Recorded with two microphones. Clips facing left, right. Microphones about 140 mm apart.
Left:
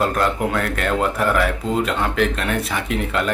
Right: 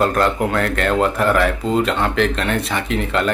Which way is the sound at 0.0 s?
5° left (ahead or behind).